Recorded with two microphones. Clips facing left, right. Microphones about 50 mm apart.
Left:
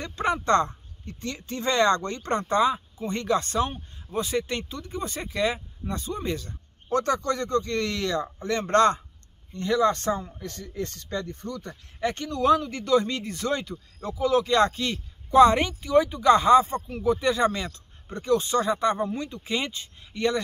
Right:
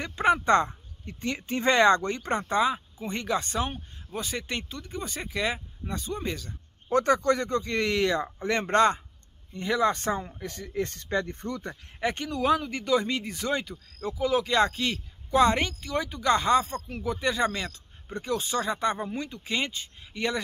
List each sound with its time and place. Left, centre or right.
0.0 s speech: centre
6.9 s a man's voice: centre
8.7 s a man's voice: centre; by 11.8 s right
12.0 s a man's voice: centre